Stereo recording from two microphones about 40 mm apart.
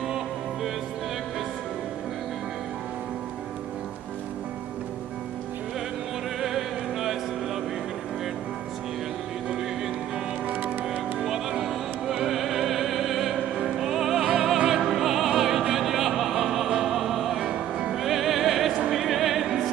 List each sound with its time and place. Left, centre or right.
6.4 s music: centre
10.5 s music: right
11.2 s opera: centre
13.7 s music: centre
14.7 s opera: centre
17.5 s music: right
17.9 s music: centre